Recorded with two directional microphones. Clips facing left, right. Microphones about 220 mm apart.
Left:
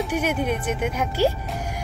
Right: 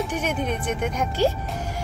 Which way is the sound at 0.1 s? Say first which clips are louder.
Left 2 dB; 10° left (ahead or behind).